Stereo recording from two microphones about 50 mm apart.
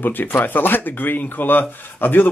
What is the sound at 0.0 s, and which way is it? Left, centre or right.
Speech, left.